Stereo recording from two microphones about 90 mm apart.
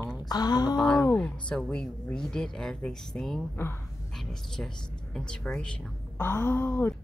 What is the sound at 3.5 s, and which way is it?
Speech, 25° left (ahead or behind).